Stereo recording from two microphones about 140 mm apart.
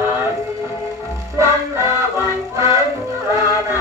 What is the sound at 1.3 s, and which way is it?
Music, 20° right (ahead or behind).